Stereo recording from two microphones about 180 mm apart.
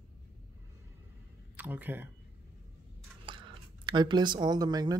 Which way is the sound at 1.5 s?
10° right (ahead or behind).